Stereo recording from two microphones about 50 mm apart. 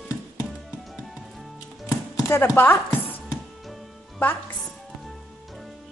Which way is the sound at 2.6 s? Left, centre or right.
Left.